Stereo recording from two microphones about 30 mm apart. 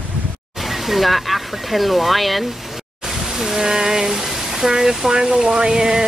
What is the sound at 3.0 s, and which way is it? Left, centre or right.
Speech, centre.